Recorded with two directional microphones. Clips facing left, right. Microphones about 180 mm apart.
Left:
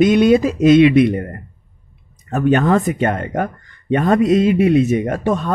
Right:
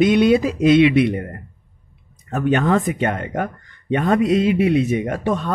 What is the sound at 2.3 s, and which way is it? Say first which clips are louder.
Speech: left 3 dB; 45° left (ahead or behind).